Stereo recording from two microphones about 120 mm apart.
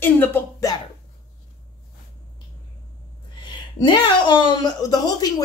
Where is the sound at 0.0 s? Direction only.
15° left (ahead or behind).